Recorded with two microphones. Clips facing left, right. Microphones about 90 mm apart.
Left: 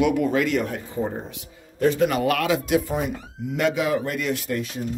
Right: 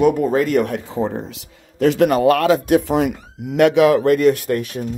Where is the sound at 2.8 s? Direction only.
80° right.